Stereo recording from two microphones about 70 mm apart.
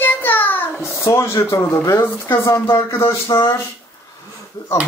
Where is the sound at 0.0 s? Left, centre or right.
Left.